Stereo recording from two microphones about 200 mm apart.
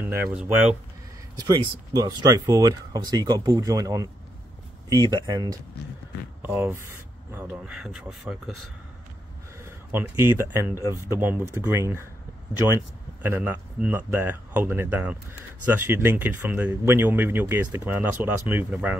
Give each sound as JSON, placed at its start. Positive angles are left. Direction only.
{"t": 0.0, "sound": "speech", "side_deg": -10}
{"t": 1.3, "sound": "speech", "side_deg": -20}
{"t": 9.7, "sound": "speech", "side_deg": -10}